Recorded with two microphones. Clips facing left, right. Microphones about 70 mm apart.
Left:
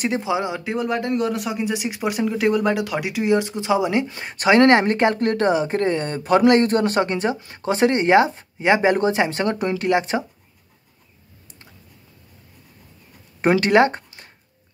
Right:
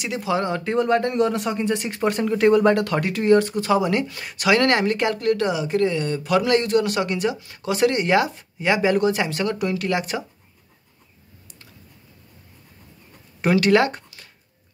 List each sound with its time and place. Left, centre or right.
0.2 s speech: centre
13.4 s speech: left